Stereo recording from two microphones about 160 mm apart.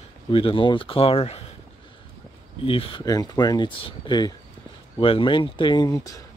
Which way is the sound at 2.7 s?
30° left (ahead or behind).